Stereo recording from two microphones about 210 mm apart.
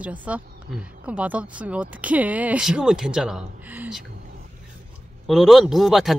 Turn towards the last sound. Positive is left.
turn(degrees=0)  # may be behind; listen again after turning